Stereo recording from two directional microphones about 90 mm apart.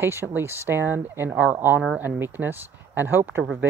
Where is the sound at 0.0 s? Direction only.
25° right (ahead or behind).